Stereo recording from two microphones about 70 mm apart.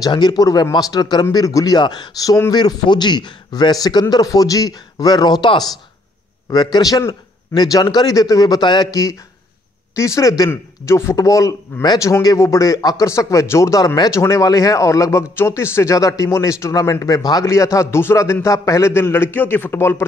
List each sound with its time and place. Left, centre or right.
0.0 s speech: left
0.5 s speech: left
1.3 s a man's voice: left
2.5 s a man's voice: left
4.1 s a man's voice: left
9.9 s a man's voice: left
10.5 s a man's voice: left
16.0 s a man's voice: left
17.5 s a man's voice: left